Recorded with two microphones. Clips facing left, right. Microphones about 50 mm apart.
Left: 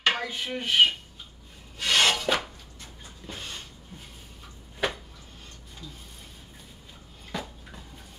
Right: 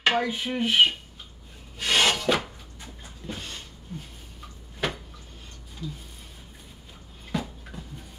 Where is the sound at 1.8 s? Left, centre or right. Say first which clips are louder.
Even; centre.